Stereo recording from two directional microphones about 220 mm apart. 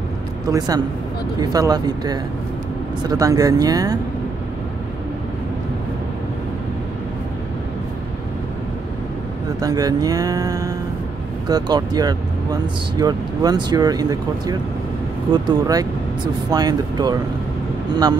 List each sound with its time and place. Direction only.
0.5 s speech: 15° right (ahead or behind)
9.6 s speech: 15° right (ahead or behind)